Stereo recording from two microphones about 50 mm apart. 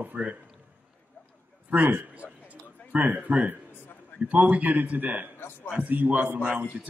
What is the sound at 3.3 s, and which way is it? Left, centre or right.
Speech, right.